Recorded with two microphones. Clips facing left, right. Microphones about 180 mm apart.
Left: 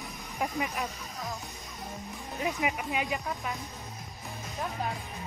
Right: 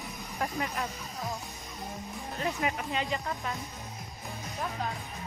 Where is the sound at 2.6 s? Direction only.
15° left (ahead or behind).